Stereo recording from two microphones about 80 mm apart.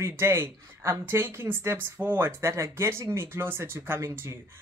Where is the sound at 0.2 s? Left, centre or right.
Right.